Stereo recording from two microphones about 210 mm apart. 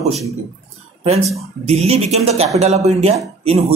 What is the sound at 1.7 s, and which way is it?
A man's voice, 30° right (ahead or behind).